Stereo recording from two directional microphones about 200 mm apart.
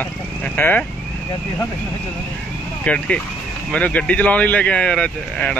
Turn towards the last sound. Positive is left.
turn(degrees=5)  # may be behind; listen again after turning